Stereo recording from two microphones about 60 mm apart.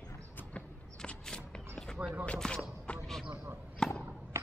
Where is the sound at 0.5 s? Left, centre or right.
Centre.